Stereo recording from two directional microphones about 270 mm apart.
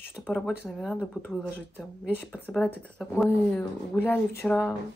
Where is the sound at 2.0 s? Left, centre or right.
Centre.